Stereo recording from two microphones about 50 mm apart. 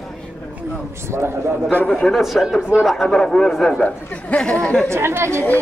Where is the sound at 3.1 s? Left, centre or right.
Centre.